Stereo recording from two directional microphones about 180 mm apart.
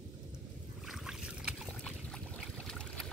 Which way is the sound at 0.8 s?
Centre (ahead or behind).